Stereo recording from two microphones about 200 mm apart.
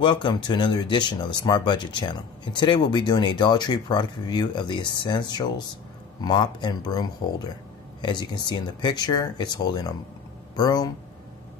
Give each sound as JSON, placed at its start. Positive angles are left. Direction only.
{"t": 0.0, "sound": "speech", "side_deg": 25}